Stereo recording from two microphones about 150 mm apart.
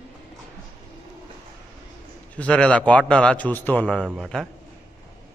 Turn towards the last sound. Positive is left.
turn(degrees=5)  # may be behind; listen again after turning